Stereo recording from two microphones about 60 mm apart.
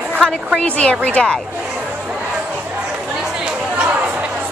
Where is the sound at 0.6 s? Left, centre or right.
Centre.